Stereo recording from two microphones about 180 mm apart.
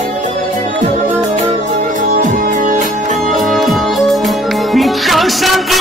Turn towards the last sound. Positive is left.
turn(degrees=0)  # may be behind; listen again after turning